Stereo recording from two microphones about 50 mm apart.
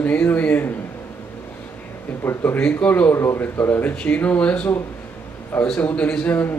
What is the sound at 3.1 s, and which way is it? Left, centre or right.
Speech, left.